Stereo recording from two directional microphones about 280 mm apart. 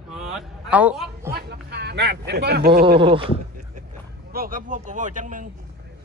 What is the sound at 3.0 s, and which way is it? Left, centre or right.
A man's voice, centre.